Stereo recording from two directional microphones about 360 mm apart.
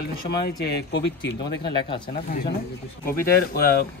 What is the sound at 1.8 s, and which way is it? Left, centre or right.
Speech, centre.